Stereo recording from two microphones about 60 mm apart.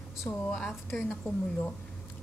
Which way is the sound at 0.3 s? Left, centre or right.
Left.